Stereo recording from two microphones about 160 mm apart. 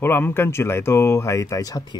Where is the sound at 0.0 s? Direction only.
15° left (ahead or behind).